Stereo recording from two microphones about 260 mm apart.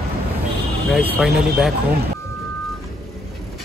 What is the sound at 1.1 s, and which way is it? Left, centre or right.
Speech, centre.